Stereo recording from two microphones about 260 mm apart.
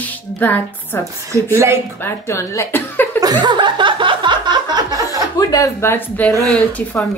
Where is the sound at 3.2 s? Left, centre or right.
Centre.